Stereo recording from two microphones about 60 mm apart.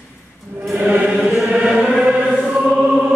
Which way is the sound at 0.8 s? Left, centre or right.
Centre.